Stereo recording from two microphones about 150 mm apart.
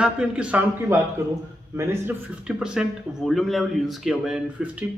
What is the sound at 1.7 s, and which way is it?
Speech, 20° right (ahead or behind).